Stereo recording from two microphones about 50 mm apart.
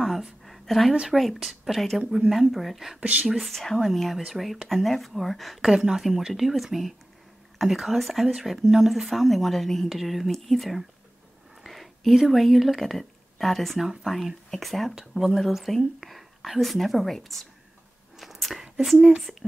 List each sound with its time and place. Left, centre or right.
0.0 s a sound: centre
1.1 s speech: centre
2.0 s speech: centre
3.0 s speech: right
3.3 s speech: centre
5.7 s speech: centre
18.1 s a sound: centre